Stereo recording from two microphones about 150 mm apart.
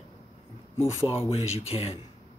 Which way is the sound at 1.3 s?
40° left (ahead or behind).